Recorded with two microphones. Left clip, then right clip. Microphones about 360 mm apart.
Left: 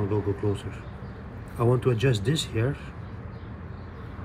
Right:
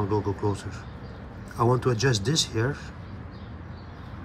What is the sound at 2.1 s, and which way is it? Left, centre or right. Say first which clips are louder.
Speech: right 3 dB; right.